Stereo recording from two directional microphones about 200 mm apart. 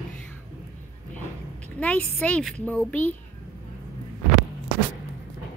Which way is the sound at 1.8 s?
5° left (ahead or behind).